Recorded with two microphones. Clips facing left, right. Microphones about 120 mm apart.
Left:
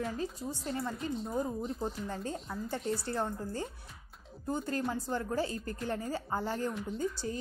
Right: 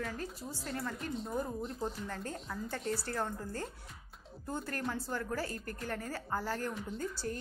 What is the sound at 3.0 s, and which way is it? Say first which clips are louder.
A woman's voice: left 3 dB; 20° left (ahead or behind).